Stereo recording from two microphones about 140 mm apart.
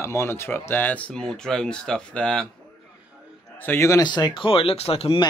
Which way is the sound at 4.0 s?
30° left (ahead or behind).